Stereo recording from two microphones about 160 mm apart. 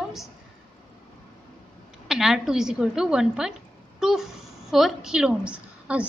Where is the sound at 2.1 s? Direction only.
5° right (ahead or behind).